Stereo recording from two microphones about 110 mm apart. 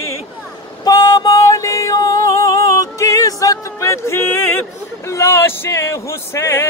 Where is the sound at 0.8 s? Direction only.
35° left (ahead or behind).